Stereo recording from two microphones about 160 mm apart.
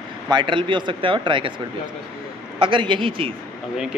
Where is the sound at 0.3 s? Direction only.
30° right (ahead or behind).